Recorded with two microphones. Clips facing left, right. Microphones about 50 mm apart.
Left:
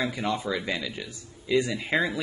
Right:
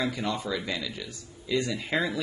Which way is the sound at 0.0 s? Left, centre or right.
Centre.